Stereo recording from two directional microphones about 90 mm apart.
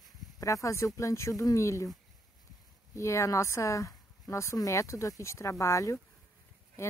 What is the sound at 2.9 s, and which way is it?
A woman's voice, 35° left (ahead or behind).